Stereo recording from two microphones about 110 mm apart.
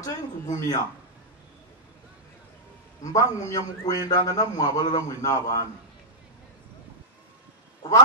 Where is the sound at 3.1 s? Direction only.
30° left (ahead or behind).